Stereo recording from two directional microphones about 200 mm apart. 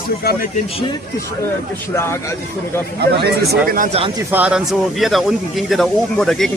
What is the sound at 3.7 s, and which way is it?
Speech, 40° right (ahead or behind).